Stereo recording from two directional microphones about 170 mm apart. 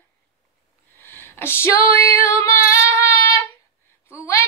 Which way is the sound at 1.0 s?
10° left (ahead or behind).